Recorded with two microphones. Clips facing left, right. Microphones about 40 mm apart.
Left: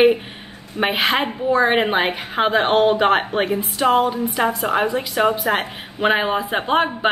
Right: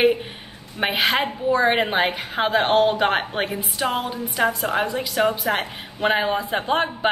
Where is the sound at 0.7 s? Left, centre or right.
Centre.